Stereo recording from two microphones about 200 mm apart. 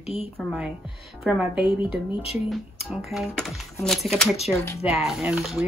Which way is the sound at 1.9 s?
25° left (ahead or behind).